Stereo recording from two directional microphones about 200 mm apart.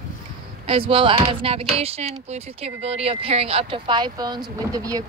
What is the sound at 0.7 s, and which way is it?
Speech, 25° right (ahead or behind).